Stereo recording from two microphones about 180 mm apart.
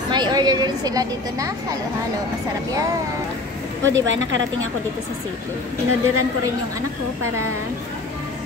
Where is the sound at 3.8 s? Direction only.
90° right.